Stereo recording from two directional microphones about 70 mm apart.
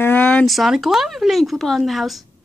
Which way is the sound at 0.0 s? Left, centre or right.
Left.